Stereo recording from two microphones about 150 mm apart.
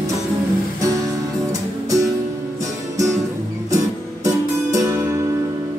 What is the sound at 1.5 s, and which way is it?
Music, 20° right (ahead or behind).